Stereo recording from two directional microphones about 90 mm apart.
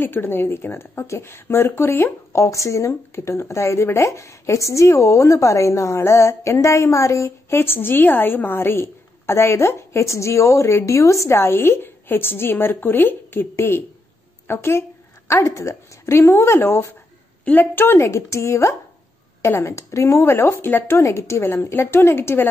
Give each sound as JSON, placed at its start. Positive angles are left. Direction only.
{"t": 0.0, "sound": "a woman's voice", "side_deg": 25}